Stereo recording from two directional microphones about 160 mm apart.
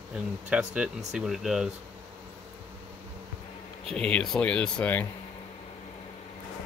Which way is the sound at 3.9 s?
5° left (ahead or behind).